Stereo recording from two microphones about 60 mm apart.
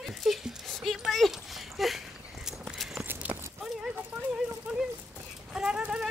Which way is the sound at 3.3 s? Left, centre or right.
Right.